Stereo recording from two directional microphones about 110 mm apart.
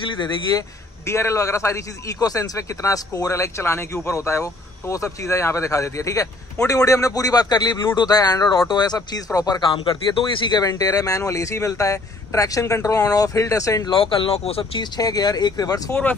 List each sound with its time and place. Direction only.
0.1 s speech: 40° left (ahead or behind)
1.0 s a man's voice: 25° left (ahead or behind)
9.8 s speech: 50° left (ahead or behind); by 13.8 s 30° left (ahead or behind)
13.8 s speech: 50° left (ahead or behind)
14.8 s speech: 35° left (ahead or behind)
15.9 s speech: 15° left (ahead or behind)